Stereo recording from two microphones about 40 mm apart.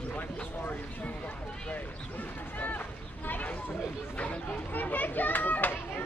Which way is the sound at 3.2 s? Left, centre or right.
Left.